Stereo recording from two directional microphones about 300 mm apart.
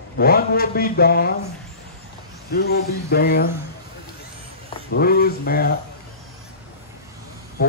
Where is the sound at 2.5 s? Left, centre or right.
Left.